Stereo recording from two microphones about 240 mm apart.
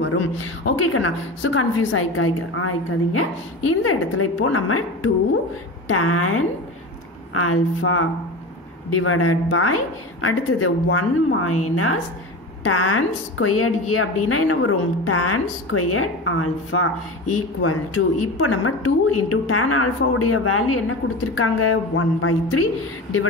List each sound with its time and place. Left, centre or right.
0.0 s a sound: left
0.9 s a woman's voice: left
21.0 s a woman's voice: left
21.4 s a woman's voice: left